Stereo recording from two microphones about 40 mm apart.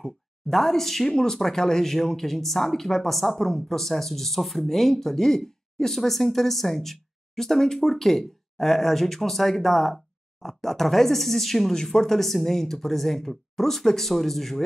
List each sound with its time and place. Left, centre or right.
0.0 s speech: centre
1.1 s speech: centre